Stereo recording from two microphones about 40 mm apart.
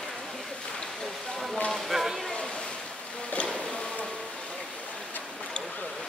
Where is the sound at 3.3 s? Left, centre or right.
Left.